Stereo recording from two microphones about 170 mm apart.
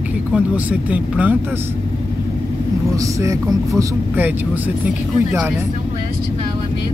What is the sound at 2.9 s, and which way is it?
Speech, 20° right (ahead or behind).